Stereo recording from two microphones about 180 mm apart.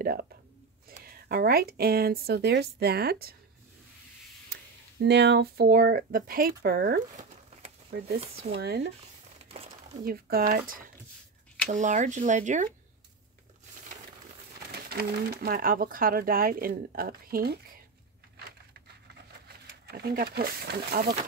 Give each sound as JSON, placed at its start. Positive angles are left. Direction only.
{"t": 0.0, "sound": "speech", "side_deg": -55}
{"t": 5.0, "sound": "speech", "side_deg": -70}
{"t": 8.2, "sound": "speech", "side_deg": -35}
{"t": 8.5, "sound": "speech", "side_deg": -65}
{"t": 10.0, "sound": "speech", "side_deg": -55}
{"t": 14.7, "sound": "speech", "side_deg": -60}
{"t": 19.4, "sound": "speech", "side_deg": -60}